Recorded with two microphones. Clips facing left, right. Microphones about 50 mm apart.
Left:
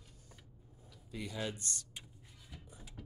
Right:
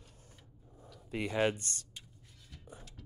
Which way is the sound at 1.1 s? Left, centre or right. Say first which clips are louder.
Right 9 dB; right.